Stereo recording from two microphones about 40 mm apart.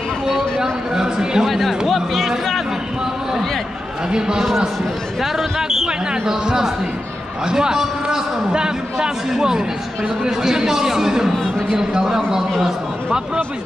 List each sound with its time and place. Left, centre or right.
0.6 s a sound: centre
1.5 s speech: centre
1.9 s music: centre
4.4 s a man's voice: centre